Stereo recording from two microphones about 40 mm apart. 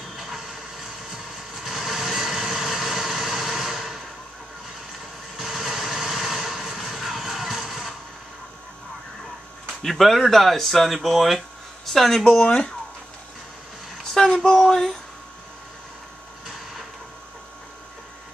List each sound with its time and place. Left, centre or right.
0.1 s vehicle: centre
5.4 s vehicle: centre
9.8 s speech: centre
12.4 s speech: left
14.2 s a sound: centre
14.6 s speech: centre